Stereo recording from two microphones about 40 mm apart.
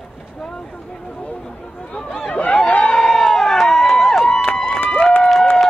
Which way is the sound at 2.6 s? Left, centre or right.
Left.